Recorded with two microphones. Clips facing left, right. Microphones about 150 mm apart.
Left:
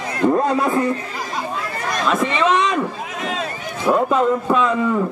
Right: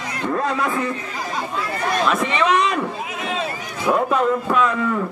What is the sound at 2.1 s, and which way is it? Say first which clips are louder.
Speech: left 4 dB; 5° right (ahead or behind).